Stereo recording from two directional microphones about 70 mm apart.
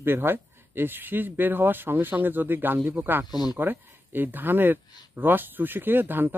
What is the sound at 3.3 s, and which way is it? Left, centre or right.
Speech, left.